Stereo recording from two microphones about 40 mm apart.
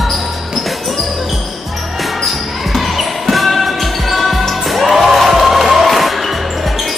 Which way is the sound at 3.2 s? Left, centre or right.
Centre.